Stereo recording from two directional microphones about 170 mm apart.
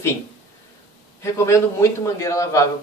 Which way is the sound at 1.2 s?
15° left (ahead or behind).